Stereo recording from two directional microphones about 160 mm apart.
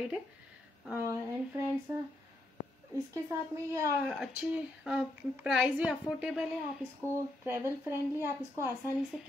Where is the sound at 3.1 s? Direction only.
20° right (ahead or behind).